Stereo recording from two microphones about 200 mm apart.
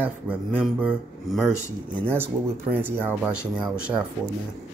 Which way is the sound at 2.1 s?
10° right (ahead or behind).